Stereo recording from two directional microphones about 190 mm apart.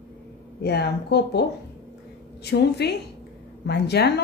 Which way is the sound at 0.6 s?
60° left (ahead or behind).